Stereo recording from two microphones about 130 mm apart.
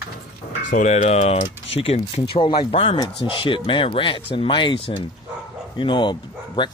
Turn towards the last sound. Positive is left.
turn(degrees=35)  # may be behind; listen again after turning